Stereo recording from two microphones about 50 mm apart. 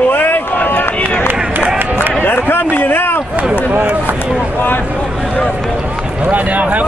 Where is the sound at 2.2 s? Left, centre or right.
Left.